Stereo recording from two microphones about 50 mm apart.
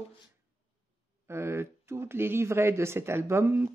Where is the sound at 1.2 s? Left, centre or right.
Right.